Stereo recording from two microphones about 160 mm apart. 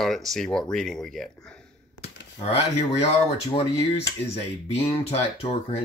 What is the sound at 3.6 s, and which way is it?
Speech, 40° left (ahead or behind).